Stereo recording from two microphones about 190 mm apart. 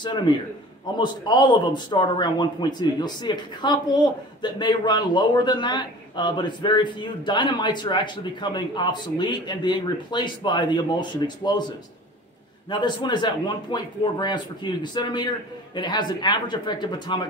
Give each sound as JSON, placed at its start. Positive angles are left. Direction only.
{"t": 0.3, "sound": "speech", "side_deg": 25}
{"t": 12.6, "sound": "speech", "side_deg": 25}